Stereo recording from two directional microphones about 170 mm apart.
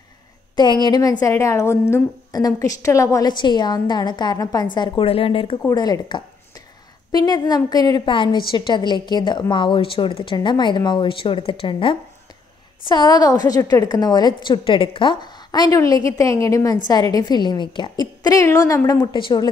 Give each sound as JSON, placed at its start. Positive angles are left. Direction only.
{"t": 0.6, "sound": "a woman's voice", "side_deg": 25}